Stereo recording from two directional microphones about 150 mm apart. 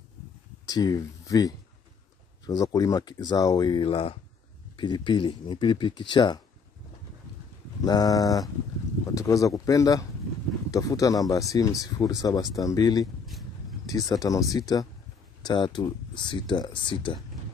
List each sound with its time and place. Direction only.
0.7 s speech: 25° left (ahead or behind)
7.8 s speech: 25° left (ahead or behind)
13.0 s a sound: centre (ahead or behind)
13.8 s speech: 25° left (ahead or behind)